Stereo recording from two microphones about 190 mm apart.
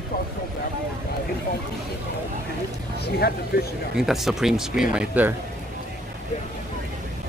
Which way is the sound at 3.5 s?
55° left (ahead or behind).